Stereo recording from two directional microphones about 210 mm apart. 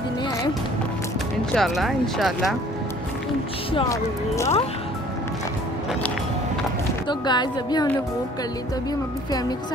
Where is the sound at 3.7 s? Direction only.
20° left (ahead or behind).